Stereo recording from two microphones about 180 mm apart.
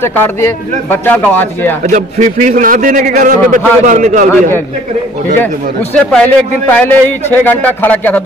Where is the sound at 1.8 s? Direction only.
45° right (ahead or behind).